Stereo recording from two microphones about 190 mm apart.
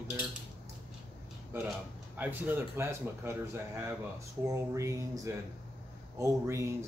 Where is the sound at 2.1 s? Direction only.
10° right (ahead or behind).